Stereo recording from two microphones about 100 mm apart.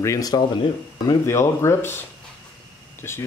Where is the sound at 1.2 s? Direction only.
25° left (ahead or behind).